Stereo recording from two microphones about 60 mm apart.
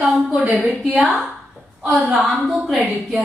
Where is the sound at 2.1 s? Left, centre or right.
Centre.